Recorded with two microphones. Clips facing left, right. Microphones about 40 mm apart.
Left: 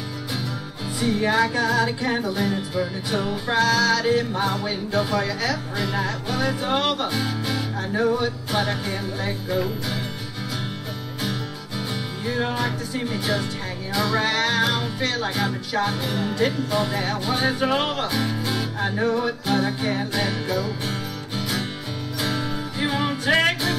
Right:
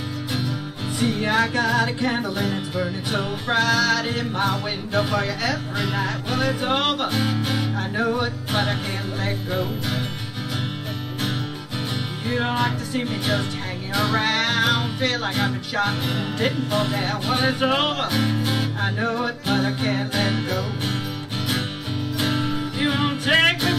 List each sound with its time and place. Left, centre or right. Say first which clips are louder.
1.2 s music: even; right
7.9 s music: left 3 dB; centre
8.2 s music: even; right
12.3 s music: right 2 dB; right
16.9 s music: right 1 dB; centre
18.8 s music: left 1 dB; centre
19.0 s music: left 2 dB; right
22.2 s music: right 2 dB; right